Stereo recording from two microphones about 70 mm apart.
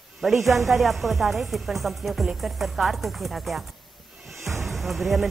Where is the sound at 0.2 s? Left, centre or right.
Centre.